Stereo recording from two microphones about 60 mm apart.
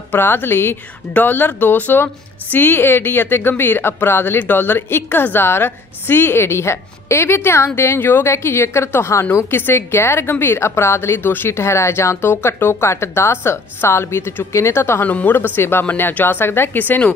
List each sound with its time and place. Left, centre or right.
0.1 s a woman's voice: left
15.0 s a woman's voice: left